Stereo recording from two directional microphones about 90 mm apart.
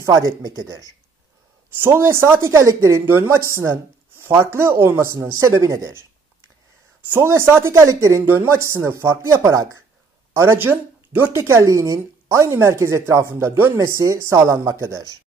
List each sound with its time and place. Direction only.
0.0 s speech: 40° right (ahead or behind)
1.8 s speech: 30° right (ahead or behind)
7.2 s speech: 30° right (ahead or behind)
10.3 s speech: 30° right (ahead or behind)